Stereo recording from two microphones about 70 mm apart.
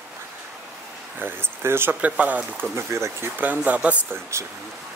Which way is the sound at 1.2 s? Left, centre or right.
Right.